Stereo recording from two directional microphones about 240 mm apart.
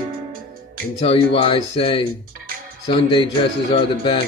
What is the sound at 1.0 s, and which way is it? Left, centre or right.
Speech, left.